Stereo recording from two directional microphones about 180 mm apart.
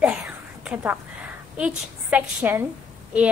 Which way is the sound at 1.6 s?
5° right (ahead or behind).